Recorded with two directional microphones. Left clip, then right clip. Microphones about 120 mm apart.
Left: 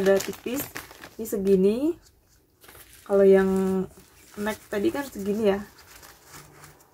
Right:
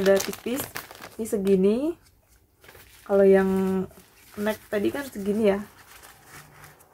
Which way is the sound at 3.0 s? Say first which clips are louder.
Even; centre (ahead or behind).